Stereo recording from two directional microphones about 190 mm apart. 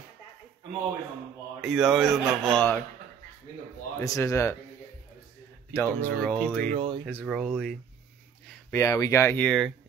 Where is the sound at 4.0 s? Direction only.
15° left (ahead or behind).